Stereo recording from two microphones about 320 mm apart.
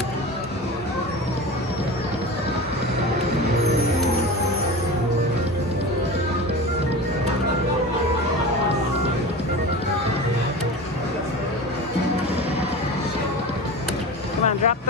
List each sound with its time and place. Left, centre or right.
14.4 s vehicle: left